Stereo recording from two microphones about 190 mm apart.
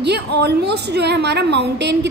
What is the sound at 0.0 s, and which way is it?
A woman's voice, 60° right (ahead or behind).